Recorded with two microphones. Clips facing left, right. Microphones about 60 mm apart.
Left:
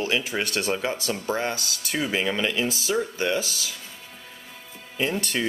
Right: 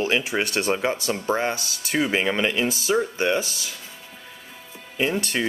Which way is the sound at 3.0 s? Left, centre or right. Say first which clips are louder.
Right 1 dB; right.